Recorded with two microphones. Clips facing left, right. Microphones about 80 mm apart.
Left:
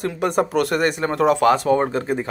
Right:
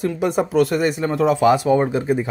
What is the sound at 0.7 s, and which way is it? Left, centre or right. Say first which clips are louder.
Speech: even; left.